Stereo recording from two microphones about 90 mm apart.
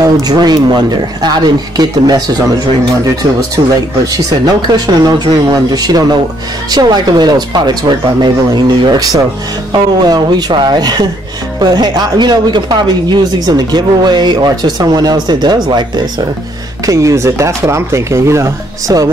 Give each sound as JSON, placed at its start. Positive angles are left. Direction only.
{"t": 0.0, "sound": "speech", "side_deg": -50}
{"t": 16.8, "sound": "speech", "side_deg": -35}